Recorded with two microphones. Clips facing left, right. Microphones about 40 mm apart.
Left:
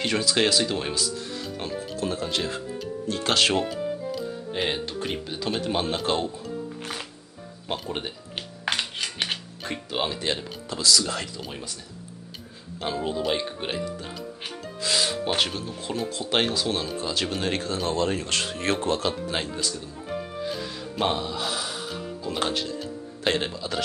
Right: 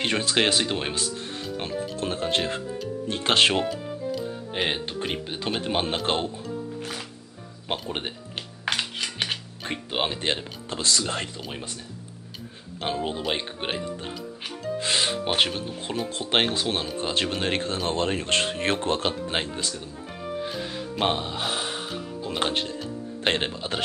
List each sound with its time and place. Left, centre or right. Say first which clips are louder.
0.0 s speech: even; right
4.6 s speech: even; right
8.6 s music: even; centre
9.7 s speech: right 1 dB; right
12.8 s speech: left 1 dB; right
14.8 s music: left 1 dB; right
16.2 s speech: right 1 dB; right
21.0 s music: even; right
22.4 s speech: right 1 dB; right